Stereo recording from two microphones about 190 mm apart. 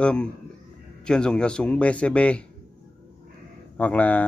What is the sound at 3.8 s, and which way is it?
Speech, 10° left (ahead or behind).